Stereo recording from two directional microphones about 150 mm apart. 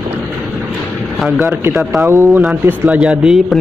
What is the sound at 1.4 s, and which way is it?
Speech, 15° right (ahead or behind).